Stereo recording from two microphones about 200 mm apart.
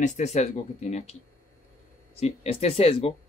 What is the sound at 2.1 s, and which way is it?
Speech, 30° left (ahead or behind).